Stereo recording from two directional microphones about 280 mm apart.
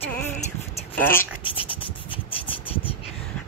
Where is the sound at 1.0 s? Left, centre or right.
Centre.